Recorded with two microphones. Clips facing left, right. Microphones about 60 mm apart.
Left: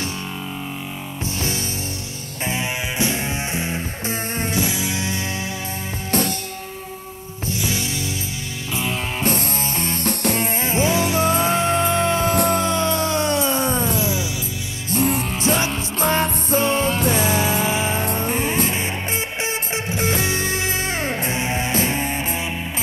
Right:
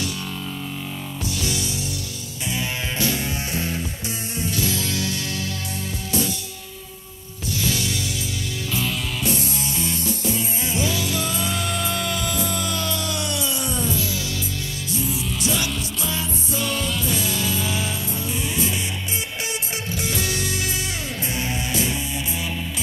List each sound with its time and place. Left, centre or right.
1.2 s music: left
7.4 s music: left
9.2 s music: left
10.6 s music: left
14.9 s music: left
15.3 s music: left
17.9 s music: left